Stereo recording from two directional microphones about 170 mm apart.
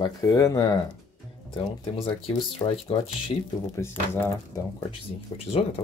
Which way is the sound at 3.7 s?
15° left (ahead or behind).